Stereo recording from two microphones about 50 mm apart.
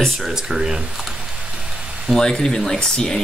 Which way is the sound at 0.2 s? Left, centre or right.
Centre.